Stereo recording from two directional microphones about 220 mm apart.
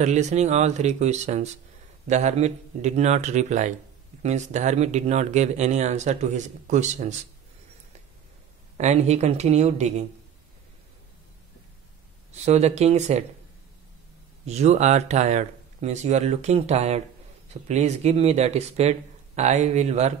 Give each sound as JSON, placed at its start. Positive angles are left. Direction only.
{"t": 0.0, "sound": "speech", "side_deg": -30}
{"t": 8.7, "sound": "speech", "side_deg": -30}
{"t": 12.3, "sound": "speech", "side_deg": -30}
{"t": 14.4, "sound": "speech", "side_deg": -30}